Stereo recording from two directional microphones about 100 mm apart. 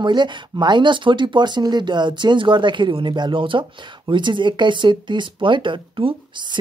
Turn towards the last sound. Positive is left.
turn(degrees=-60)  # may be behind; listen again after turning